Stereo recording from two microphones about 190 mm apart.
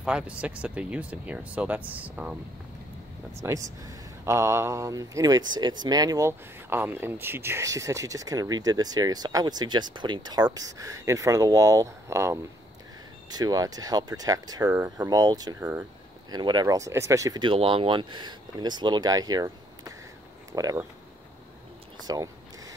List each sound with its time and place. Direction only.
0.0 s speech: 5° right (ahead or behind)
3.4 s speech: 15° right (ahead or behind)
22.0 s a sound: 20° right (ahead or behind)